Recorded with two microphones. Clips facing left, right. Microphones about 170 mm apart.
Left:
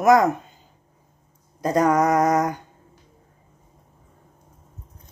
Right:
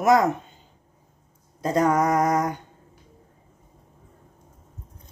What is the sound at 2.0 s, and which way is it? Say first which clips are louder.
Speech: left 2 dB; 25° left (ahead or behind).